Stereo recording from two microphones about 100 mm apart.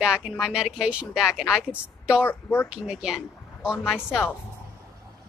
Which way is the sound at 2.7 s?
5° right (ahead or behind).